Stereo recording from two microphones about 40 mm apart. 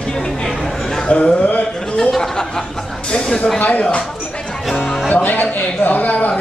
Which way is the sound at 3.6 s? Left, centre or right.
Left.